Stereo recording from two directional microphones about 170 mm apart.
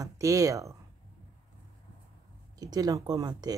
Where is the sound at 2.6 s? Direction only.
20° right (ahead or behind).